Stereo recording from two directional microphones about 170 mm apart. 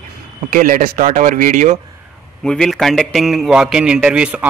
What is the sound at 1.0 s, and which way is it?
Speech, 45° right (ahead or behind).